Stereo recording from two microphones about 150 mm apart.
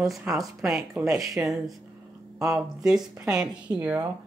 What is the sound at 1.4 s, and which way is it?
A woman's voice, 10° right (ahead or behind).